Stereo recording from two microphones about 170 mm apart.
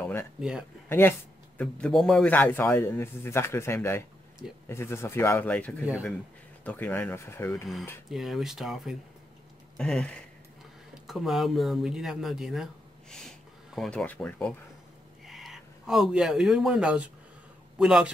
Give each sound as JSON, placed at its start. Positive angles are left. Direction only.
{"t": 0.0, "sound": "a sound", "side_deg": 15}
{"t": 0.4, "sound": "speech", "side_deg": -5}
{"t": 0.8, "sound": "a man's voice", "side_deg": 15}
{"t": 8.1, "sound": "speech", "side_deg": 0}